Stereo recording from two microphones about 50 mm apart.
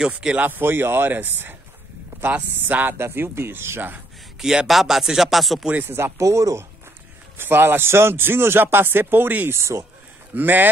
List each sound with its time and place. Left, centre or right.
0.0 s speech: centre
0.4 s speech: right
2.6 s speech: right
4.4 s speech: centre
5.9 s speech: right
6.1 s speech: right
7.3 s speech: right
9.5 s speech: right
10.3 s speech: right